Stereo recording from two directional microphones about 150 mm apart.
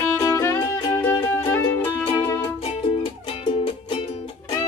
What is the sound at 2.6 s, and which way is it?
Music, 35° left (ahead or behind).